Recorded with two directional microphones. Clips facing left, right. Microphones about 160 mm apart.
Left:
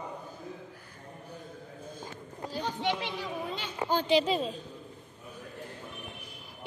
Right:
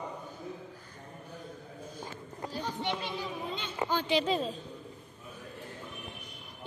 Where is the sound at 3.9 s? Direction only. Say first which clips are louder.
Left 4 dB; 35° left (ahead or behind).